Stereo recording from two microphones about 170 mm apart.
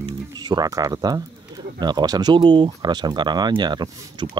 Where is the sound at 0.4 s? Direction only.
25° right (ahead or behind).